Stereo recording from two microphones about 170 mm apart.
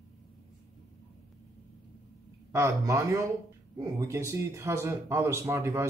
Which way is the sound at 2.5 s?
20° right (ahead or behind).